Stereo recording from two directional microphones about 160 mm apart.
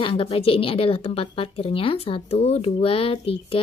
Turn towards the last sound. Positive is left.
turn(degrees=35)  # may be behind; listen again after turning